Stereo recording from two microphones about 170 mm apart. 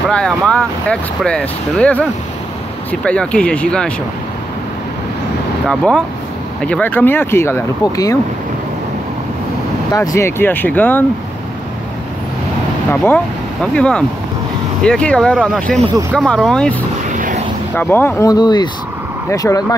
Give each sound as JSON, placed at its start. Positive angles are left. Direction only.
{"t": 0.1, "sound": "speech", "side_deg": 5}
{"t": 5.7, "sound": "speech", "side_deg": 5}
{"t": 9.9, "sound": "speech", "side_deg": 15}
{"t": 12.9, "sound": "speech", "side_deg": 10}
{"t": 17.7, "sound": "speech", "side_deg": 15}